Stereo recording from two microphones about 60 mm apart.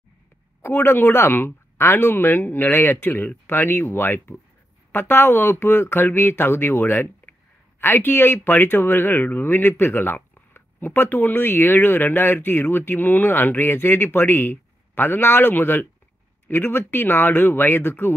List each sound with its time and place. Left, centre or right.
0.6 s speech: left